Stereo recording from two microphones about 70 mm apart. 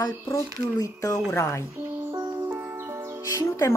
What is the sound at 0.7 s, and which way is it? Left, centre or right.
Speech, left.